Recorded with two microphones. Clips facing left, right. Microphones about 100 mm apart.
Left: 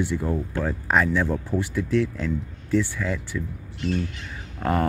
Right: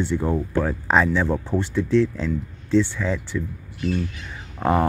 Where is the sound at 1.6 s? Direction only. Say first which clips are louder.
Right 4 dB; 10° left (ahead or behind).